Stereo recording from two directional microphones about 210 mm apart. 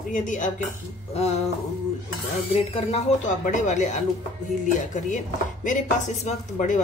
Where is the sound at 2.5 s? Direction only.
30° left (ahead or behind).